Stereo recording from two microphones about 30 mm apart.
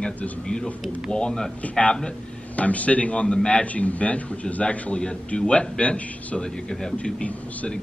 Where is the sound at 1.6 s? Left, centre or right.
Left.